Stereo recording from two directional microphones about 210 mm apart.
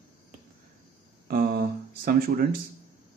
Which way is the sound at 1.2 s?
45° right (ahead or behind).